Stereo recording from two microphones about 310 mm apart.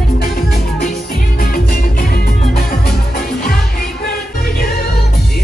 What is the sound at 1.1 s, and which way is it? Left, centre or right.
Music, left.